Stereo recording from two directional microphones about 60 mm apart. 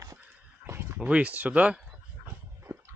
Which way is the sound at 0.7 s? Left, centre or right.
Right.